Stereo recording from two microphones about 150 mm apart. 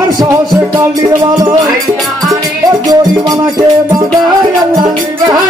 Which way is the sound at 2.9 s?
25° right (ahead or behind).